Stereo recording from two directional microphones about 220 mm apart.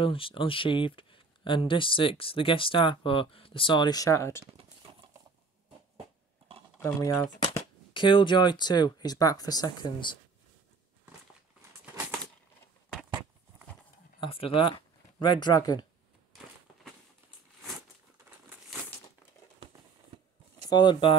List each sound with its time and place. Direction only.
0.0 s speech: 25° left (ahead or behind)
6.8 s speech: 15° left (ahead or behind)
14.2 s speech: 25° left (ahead or behind)
20.7 s speech: 20° left (ahead or behind)